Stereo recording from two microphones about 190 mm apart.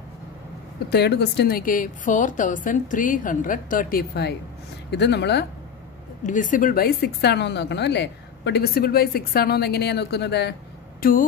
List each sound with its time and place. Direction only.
0.8 s a woman's voice: 60° left (ahead or behind)
6.2 s a woman's voice: 40° left (ahead or behind); by 10.5 s 60° left (ahead or behind)
11.0 s speech: 45° left (ahead or behind)